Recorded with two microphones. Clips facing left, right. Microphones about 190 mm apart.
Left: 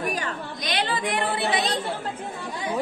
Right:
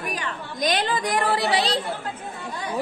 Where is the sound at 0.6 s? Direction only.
40° right (ahead or behind).